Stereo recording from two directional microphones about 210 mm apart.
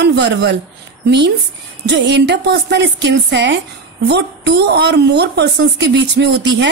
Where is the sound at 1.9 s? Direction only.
55° right (ahead or behind).